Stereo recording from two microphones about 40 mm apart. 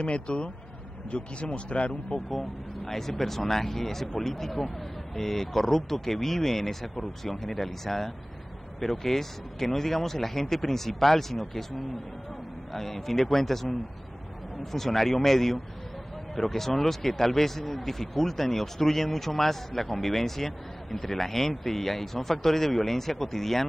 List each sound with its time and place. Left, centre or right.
0.0 s a man's voice: left
2.3 s speech: centre